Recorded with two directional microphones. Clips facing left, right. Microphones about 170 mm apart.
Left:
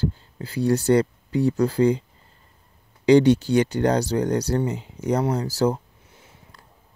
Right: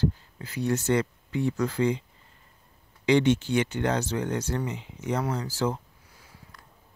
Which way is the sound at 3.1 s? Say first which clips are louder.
Left 6 dB; 35° left (ahead or behind).